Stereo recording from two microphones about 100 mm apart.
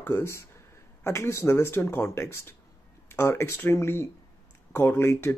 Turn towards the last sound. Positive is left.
turn(degrees=25)  # may be behind; listen again after turning